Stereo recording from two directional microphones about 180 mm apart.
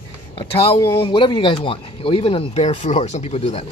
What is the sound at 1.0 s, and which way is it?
A man's voice, 25° left (ahead or behind).